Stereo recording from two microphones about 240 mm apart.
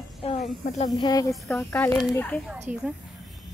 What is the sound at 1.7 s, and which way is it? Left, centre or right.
Speech, centre.